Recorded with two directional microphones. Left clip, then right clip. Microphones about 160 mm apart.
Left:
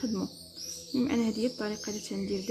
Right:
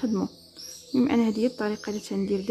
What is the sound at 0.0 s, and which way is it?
Speech, 30° right (ahead or behind).